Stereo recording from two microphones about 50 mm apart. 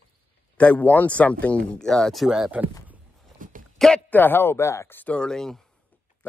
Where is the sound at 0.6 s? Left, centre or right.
Left.